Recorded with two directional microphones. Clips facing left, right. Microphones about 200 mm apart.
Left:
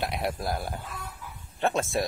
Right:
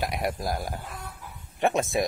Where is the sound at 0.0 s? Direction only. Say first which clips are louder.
Right 1 dB; 10° right (ahead or behind).